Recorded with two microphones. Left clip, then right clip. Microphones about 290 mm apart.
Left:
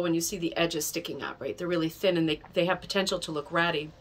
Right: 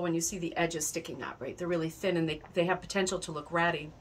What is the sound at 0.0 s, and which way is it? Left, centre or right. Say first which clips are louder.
A woman's voice: left 4 dB; centre.